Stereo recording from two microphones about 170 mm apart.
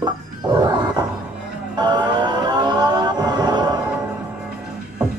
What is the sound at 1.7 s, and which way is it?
Vehicle, 25° right (ahead or behind).